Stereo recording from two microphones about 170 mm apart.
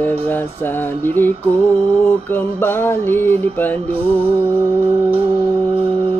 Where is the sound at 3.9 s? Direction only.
35° right (ahead or behind).